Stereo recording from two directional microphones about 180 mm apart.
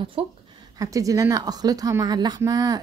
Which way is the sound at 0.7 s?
20° right (ahead or behind).